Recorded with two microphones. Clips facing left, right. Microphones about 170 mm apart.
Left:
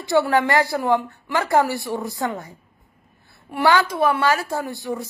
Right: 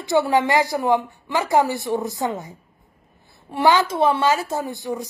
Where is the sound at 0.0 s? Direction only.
20° right (ahead or behind).